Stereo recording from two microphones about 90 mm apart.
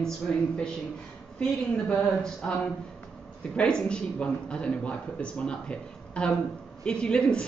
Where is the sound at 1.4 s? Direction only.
10° left (ahead or behind).